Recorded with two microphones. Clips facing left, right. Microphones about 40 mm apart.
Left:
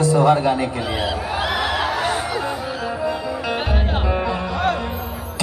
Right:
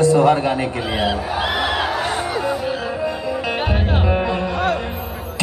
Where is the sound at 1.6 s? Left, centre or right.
Centre.